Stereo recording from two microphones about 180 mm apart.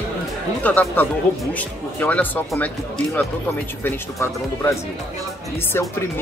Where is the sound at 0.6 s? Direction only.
10° left (ahead or behind).